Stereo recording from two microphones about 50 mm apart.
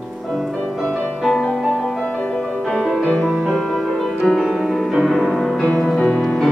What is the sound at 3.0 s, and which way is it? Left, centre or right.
Music, left.